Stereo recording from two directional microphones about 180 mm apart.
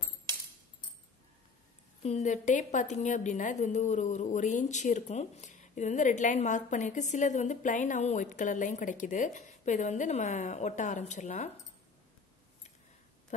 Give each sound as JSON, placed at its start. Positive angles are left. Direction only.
{"t": 2.0, "sound": "a woman's voice", "side_deg": 40}